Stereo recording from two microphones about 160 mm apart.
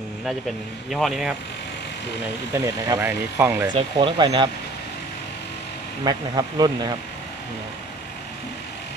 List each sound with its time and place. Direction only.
0.8 s a man's voice: centre (ahead or behind)
2.5 s speech: 20° right (ahead or behind)
3.7 s speech: 30° right (ahead or behind)
6.0 s speech: 25° right (ahead or behind)